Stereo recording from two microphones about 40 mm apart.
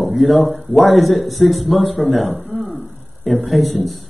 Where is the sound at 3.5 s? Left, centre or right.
Centre.